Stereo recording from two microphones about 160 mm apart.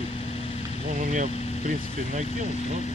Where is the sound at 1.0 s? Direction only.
50° right (ahead or behind).